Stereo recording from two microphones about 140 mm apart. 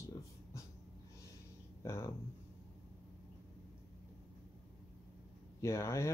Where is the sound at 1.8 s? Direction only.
20° left (ahead or behind).